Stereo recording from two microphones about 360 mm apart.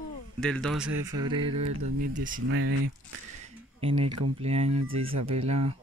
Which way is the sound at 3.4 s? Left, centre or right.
Centre.